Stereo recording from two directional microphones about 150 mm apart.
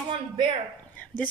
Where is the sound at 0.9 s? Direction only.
10° left (ahead or behind).